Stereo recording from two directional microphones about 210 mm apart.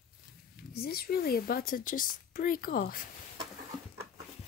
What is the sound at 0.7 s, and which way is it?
A woman's voice, 45° left (ahead or behind).